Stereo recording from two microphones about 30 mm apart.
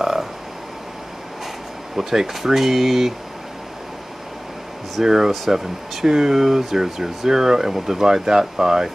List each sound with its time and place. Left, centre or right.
0.0 s frog: centre
2.0 s speech: centre
5.0 s speech: centre